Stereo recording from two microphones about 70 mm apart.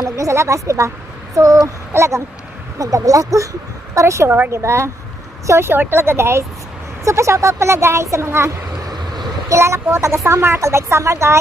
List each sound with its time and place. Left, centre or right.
0.0 s a woman's voice: right
2.0 s a woman's voice: right
2.8 s speech: right
3.9 s a woman's voice: right
8.8 s vehicle: right
9.5 s a woman's voice: right